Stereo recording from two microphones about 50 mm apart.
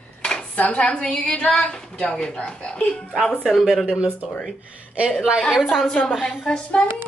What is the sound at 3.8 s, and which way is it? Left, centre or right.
Speech, centre.